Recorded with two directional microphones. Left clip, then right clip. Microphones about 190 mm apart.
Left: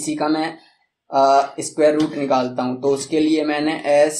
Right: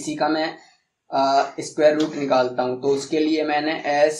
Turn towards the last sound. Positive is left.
turn(degrees=40)  # may be behind; listen again after turning